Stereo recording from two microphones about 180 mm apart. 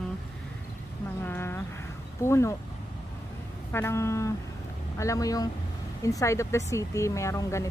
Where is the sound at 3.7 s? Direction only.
15° left (ahead or behind).